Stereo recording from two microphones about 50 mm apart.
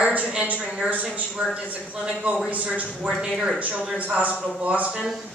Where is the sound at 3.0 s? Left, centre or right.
Right.